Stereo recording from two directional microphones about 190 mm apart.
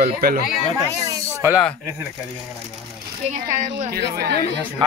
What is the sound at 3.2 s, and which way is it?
Speech, 40° right (ahead or behind).